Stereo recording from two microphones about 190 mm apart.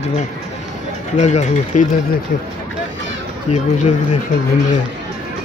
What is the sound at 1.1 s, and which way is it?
Speech, 40° left (ahead or behind).